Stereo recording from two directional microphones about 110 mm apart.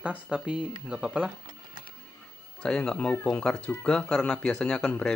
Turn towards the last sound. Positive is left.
turn(degrees=10)  # may be behind; listen again after turning